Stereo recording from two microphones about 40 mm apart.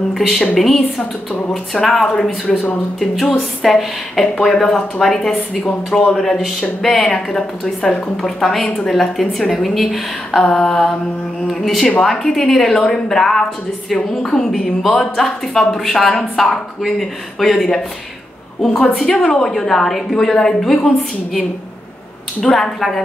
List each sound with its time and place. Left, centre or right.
0.1 s speech: centre
10.4 s speech: centre